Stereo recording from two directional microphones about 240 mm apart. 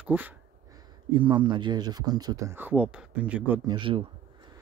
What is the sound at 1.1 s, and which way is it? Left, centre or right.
Speech, centre.